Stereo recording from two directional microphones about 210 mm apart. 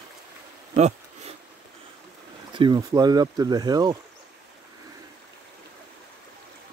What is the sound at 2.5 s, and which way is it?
Speech, 20° right (ahead or behind).